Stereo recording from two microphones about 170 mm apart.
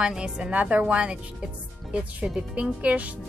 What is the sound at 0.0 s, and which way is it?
A woman's voice, 5° right (ahead or behind).